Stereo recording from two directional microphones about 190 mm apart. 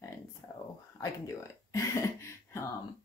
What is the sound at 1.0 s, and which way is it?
Speech, 15° left (ahead or behind).